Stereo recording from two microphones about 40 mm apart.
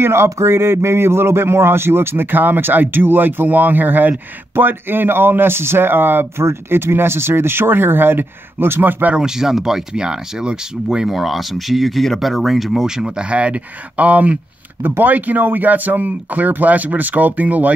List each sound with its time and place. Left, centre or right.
0.0 s speech: right
9.2 s speech: centre
9.9 s speech: right
11.1 s speech: centre
12.8 s speech: centre; by 14.4 s right
14.8 s speech: right